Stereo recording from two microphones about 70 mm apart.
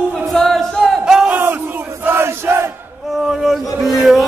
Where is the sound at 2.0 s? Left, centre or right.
Right.